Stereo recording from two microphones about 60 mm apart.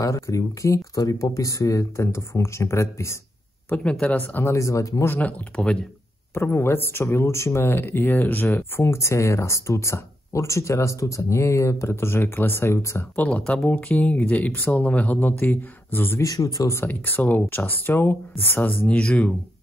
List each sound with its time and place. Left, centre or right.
0.0 s speech: left
3.6 s speech: left
4.5 s speech: left
5.0 s speech: left
5.6 s speech: centre
6.3 s speech: left
13.5 s speech: left
16.2 s speech: left
16.8 s speech: left